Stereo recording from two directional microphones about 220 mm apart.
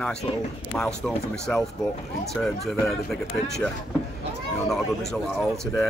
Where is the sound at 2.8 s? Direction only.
Centre (ahead or behind).